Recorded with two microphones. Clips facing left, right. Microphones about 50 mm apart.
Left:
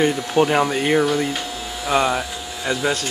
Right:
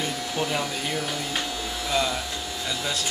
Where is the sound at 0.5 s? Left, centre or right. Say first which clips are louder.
Left 10 dB; left.